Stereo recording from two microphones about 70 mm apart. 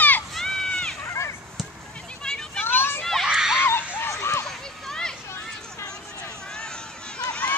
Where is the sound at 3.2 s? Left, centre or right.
Centre.